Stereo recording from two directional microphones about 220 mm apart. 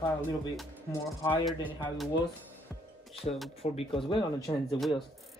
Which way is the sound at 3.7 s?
25° left (ahead or behind).